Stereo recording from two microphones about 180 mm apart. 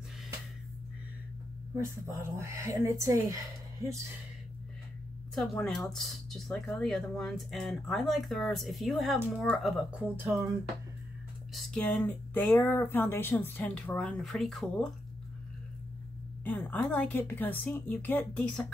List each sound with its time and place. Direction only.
1.8 s speech: 15° right (ahead or behind)
5.3 s speech: centre (ahead or behind)
11.5 s speech: centre (ahead or behind)
16.4 s speech: 10° left (ahead or behind)